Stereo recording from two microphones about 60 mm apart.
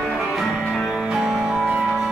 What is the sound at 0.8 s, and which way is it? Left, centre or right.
Music, centre.